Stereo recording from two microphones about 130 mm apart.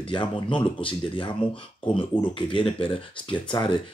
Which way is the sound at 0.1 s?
40° left (ahead or behind).